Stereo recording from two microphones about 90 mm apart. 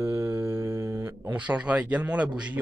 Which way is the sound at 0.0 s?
30° right (ahead or behind).